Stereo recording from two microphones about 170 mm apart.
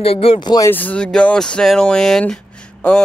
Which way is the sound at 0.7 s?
10° left (ahead or behind).